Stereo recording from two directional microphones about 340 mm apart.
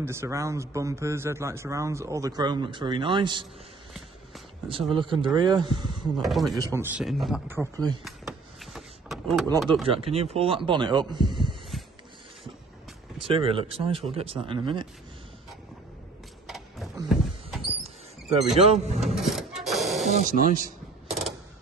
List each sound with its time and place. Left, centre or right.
0.0 s speech: centre
4.9 s speech: centre
6.1 s speech: centre
8.0 s a sound: centre
9.8 s speech: centre
11.7 s a sound: centre
13.3 s speech: centre
16.4 s a sound: centre
16.9 s rodents: centre
18.6 s speech: centre
18.9 s printer: centre
20.1 s speech: right